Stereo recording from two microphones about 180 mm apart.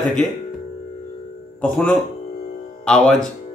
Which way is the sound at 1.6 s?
5° left (ahead or behind).